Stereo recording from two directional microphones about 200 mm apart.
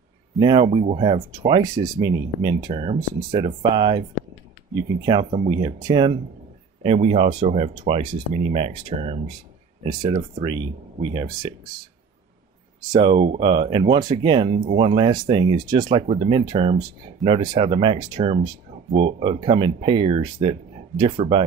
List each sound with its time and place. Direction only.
0.4 s speech: 25° right (ahead or behind)
5.0 s speech: 25° right (ahead or behind)
10.4 s speech: 25° right (ahead or behind)
12.9 s speech: 25° right (ahead or behind)